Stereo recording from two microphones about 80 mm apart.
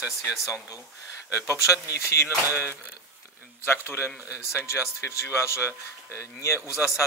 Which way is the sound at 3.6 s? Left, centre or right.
Left.